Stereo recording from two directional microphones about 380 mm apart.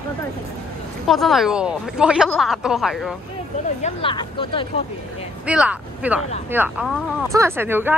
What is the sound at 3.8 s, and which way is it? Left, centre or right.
Speech, centre.